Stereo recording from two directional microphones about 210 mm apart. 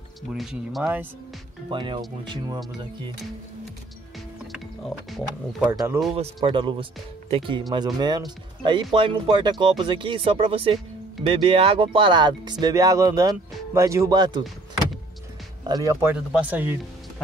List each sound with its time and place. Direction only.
0.3 s speech: centre (ahead or behind)
1.7 s speech: 20° right (ahead or behind)
4.5 s speech: centre (ahead or behind)
6.1 s speech: 25° right (ahead or behind)
15.6 s speech: 15° right (ahead or behind)